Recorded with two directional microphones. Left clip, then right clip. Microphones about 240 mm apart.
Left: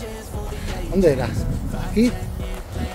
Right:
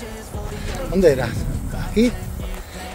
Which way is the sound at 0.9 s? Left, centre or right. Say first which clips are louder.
Right 2 dB; right.